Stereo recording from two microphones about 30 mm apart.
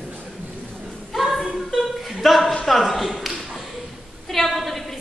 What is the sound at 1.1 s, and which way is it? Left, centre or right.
Singing, centre.